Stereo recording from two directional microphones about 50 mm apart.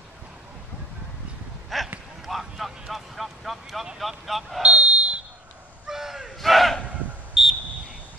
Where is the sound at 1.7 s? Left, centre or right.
Centre.